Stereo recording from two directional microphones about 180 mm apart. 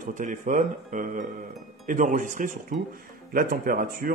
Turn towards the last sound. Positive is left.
turn(degrees=-50)  # may be behind; listen again after turning